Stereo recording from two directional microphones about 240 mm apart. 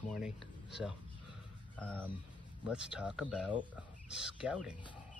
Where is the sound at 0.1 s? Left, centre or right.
Centre.